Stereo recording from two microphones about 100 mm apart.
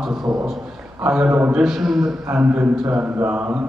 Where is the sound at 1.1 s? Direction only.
10° right (ahead or behind).